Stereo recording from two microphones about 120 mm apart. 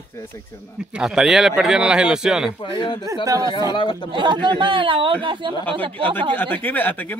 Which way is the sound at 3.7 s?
40° left (ahead or behind).